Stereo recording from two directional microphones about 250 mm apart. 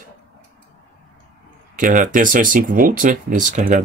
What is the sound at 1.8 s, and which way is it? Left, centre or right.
Speech, right.